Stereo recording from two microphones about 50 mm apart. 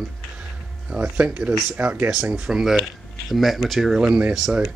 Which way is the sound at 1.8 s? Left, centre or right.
Right.